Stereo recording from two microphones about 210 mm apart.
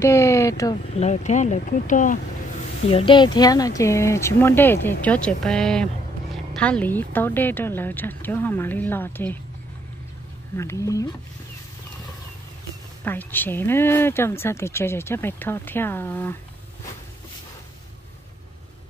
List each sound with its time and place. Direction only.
0.0 s speech: 15° left (ahead or behind)
0.9 s speech: 35° left (ahead or behind)
2.9 s speech: 25° left (ahead or behind); by 9.4 s 10° left (ahead or behind)
10.6 s speech: 15° left (ahead or behind)
13.0 s speech: 10° left (ahead or behind)